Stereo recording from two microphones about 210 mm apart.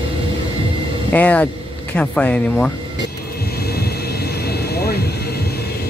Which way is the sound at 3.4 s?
45° left (ahead or behind).